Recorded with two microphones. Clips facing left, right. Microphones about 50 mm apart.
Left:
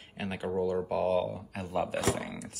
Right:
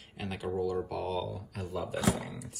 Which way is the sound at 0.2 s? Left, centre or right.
Left.